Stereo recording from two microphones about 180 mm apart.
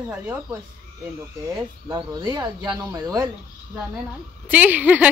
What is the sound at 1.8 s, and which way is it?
Speech, 25° right (ahead or behind).